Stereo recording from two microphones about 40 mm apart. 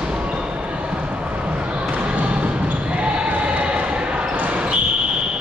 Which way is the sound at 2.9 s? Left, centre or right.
Right.